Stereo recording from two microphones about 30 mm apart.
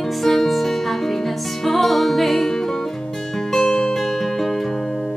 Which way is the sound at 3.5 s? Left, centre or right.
Left.